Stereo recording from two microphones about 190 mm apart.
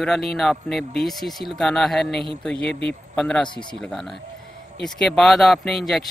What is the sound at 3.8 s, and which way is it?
Speech, centre (ahead or behind).